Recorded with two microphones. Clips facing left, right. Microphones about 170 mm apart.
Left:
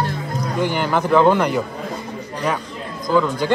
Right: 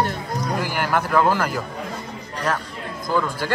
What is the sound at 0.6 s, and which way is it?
Speech, 5° right (ahead or behind).